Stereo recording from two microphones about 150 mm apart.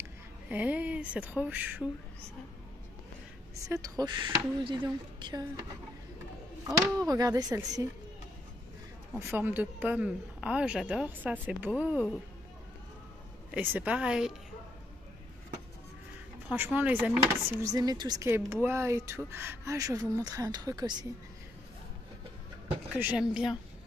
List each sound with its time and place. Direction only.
0.5 s a woman's voice: 10° right (ahead or behind)
3.6 s speech: 20° right (ahead or behind)
6.6 s speech: 25° right (ahead or behind)
9.1 s a woman's voice: 15° right (ahead or behind)
13.5 s a woman's voice: 10° right (ahead or behind)
16.4 s speech: 10° right (ahead or behind); by 21.1 s 30° right (ahead or behind)
22.9 s speech: 10° right (ahead or behind)